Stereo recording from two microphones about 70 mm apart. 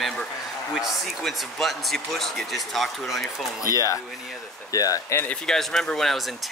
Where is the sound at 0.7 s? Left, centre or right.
Centre.